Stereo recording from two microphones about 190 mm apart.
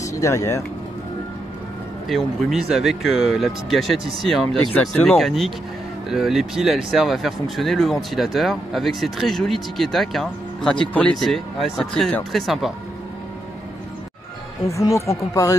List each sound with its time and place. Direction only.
0.0 s speech: 15° left (ahead or behind)
2.0 s speech: centre (ahead or behind)
14.8 s speech: 15° left (ahead or behind)